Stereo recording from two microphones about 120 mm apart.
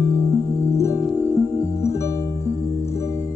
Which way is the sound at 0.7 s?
25° left (ahead or behind).